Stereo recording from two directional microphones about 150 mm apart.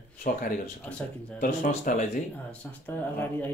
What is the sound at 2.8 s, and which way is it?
Speech, 10° left (ahead or behind).